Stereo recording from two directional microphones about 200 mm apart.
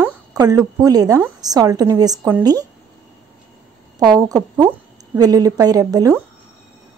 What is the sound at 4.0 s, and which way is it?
A woman's voice, 20° right (ahead or behind).